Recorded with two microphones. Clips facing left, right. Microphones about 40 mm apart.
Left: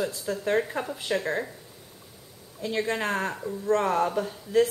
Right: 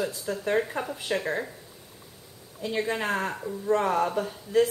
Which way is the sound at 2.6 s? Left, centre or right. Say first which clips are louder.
Even; centre.